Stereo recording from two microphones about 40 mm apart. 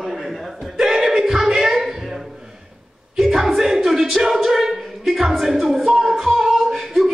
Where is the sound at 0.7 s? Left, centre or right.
Centre.